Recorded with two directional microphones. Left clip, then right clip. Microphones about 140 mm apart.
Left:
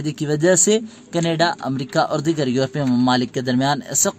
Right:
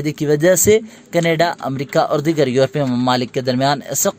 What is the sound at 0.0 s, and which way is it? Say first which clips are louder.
A man's voice: right 4 dB; 15° right (ahead or behind).